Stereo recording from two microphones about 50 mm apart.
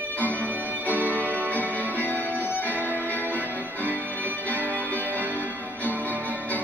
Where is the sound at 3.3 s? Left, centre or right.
Left.